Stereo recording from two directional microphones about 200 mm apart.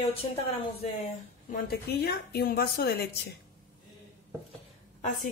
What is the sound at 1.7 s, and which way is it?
A woman's voice, 55° left (ahead or behind).